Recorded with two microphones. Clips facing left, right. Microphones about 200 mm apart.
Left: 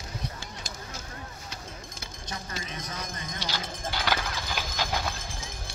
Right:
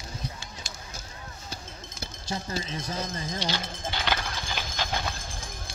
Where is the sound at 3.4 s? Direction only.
10° left (ahead or behind).